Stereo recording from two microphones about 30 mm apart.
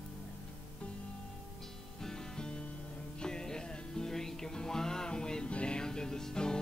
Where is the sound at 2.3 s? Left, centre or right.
Left.